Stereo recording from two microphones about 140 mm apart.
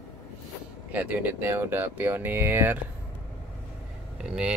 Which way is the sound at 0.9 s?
10° right (ahead or behind).